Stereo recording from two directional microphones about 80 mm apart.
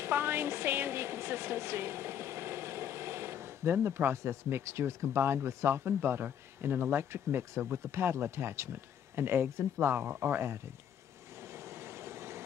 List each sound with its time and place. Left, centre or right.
0.0 s a woman's voice: right
11.4 s vehicle: right